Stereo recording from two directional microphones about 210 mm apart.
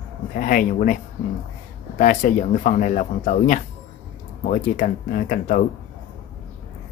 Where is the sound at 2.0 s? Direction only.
35° left (ahead or behind).